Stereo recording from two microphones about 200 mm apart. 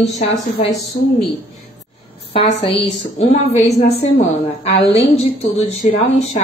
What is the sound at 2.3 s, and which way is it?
A woman's voice, 30° left (ahead or behind).